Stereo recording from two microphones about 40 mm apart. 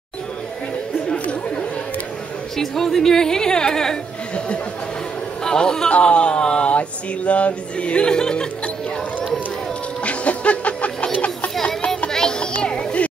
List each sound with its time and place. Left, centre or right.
2.5 s speech: centre
5.4 s a man's voice: centre
5.9 s speech: left
6.7 s speech: left; by 8.5 s centre
10.0 s music: left
12.1 s music: centre
12.6 s music: left